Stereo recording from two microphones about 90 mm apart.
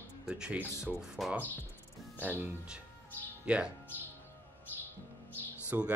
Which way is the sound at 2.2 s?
20° right (ahead or behind).